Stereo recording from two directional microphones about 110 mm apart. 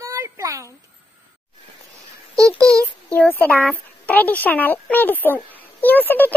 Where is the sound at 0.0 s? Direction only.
30° right (ahead or behind).